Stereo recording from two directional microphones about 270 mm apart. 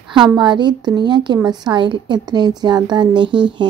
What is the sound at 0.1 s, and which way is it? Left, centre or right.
Speech, centre.